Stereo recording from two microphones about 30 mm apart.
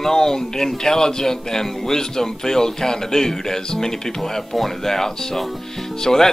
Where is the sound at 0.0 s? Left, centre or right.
Centre.